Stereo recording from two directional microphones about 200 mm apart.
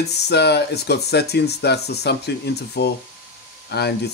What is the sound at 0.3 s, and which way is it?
Speech, 55° left (ahead or behind).